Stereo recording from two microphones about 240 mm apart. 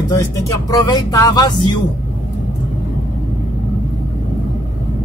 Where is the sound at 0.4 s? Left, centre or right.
Centre.